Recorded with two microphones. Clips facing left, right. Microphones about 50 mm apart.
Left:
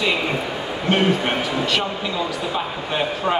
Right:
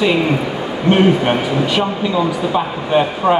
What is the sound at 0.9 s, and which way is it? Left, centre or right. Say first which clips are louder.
A man's voice: right 6 dB; centre.